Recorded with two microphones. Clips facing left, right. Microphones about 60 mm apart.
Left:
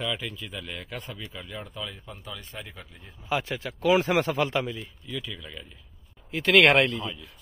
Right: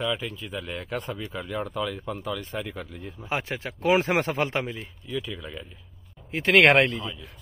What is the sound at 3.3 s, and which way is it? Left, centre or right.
Speech, right.